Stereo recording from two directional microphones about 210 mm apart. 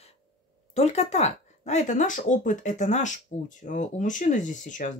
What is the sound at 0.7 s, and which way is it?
Speech, 30° left (ahead or behind).